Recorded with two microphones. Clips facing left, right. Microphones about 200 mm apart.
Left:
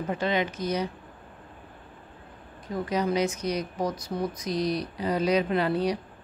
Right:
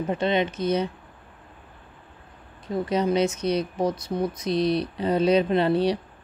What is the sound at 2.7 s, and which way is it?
Speech, 25° right (ahead or behind).